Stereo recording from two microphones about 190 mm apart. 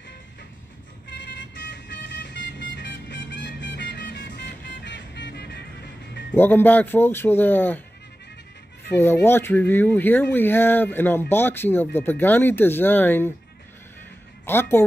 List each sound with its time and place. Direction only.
1.5 s vehicle: 70° left (ahead or behind)
6.3 s speech: 10° left (ahead or behind)
8.9 s speech: 10° left (ahead or behind)
14.4 s a woman's voice: 10° left (ahead or behind)